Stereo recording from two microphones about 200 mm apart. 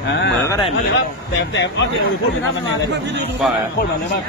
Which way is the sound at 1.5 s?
65° left (ahead or behind).